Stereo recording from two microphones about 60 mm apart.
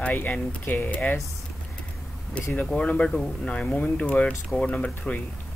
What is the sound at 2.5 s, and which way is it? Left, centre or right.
Speech, left.